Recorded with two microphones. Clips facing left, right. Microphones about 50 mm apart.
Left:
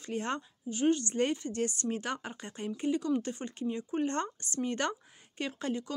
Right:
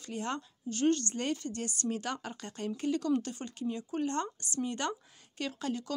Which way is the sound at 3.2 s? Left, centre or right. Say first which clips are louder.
Left 1 dB; left.